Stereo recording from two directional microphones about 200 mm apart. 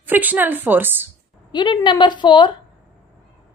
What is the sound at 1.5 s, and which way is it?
A woman's voice, 20° left (ahead or behind).